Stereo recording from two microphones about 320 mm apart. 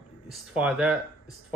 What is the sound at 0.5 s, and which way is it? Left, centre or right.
Speech, centre.